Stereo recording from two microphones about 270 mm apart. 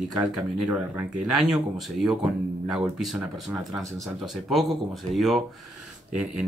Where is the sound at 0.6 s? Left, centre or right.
Centre.